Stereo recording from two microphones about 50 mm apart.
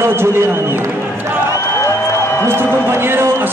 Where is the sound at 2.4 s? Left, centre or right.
Right.